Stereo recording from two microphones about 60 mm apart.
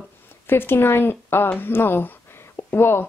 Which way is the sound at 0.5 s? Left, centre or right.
Left.